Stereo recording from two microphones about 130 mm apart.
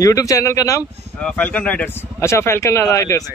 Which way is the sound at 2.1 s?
20° left (ahead or behind).